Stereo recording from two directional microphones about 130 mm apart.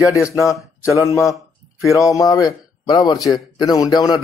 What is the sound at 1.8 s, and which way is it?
A man's voice, 25° left (ahead or behind).